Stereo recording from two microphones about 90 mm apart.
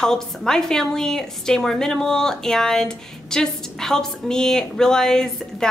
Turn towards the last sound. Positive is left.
turn(degrees=5)  # may be behind; listen again after turning